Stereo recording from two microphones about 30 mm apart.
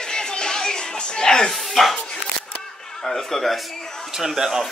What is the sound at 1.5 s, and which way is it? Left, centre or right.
Music, centre.